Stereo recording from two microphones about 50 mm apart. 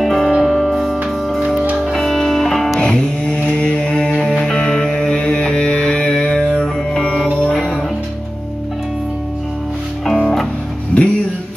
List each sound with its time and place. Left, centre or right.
0.0 s music: centre
3.4 s mantra: left
4.2 s music: centre
10.0 s music: centre
10.9 s music: left